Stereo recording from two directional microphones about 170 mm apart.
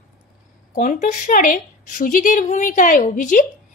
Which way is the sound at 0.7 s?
50° left (ahead or behind).